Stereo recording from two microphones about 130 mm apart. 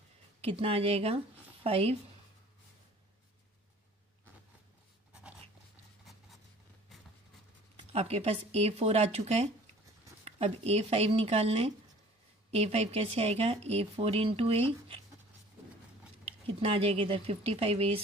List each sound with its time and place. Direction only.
0.4 s speech: 50° right (ahead or behind)
7.7 s speech: 50° right (ahead or behind)
16.3 s speech: 50° right (ahead or behind)